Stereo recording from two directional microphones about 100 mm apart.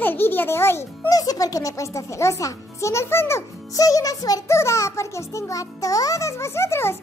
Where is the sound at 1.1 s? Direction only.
40° left (ahead or behind).